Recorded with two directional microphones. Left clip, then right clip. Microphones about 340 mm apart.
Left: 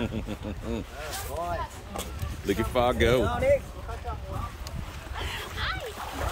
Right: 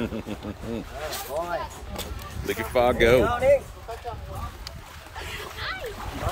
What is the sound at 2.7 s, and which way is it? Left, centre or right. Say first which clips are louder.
Speech: right 5 dB; centre.